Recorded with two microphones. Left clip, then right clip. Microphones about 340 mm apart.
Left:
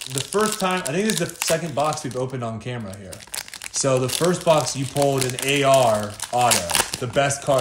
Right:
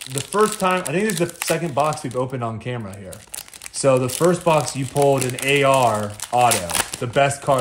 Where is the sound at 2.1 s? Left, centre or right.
Centre.